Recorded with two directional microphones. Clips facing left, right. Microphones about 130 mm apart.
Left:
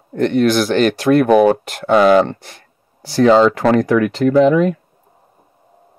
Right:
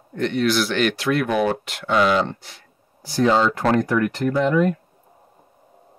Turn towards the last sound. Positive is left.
turn(degrees=90)